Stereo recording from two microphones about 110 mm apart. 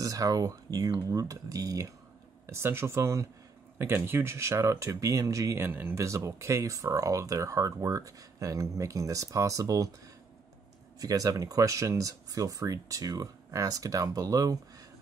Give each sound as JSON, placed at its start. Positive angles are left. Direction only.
{"t": 0.0, "sound": "speech", "side_deg": -35}
{"t": 11.0, "sound": "speech", "side_deg": -35}